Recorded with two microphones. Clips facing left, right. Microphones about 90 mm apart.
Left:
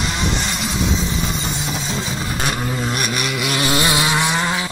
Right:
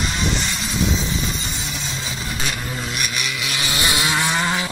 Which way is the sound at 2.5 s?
50° left (ahead or behind).